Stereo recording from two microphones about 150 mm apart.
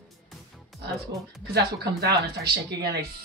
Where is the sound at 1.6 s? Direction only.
90° right.